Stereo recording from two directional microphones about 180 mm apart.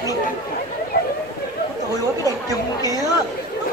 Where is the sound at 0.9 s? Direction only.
60° left (ahead or behind).